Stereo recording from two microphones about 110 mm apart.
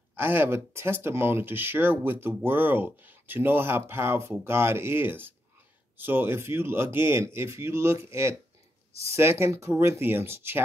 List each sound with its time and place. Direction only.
0.1 s speech: 20° right (ahead or behind)